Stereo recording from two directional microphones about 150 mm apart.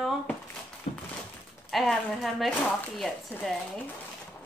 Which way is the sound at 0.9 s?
45° left (ahead or behind).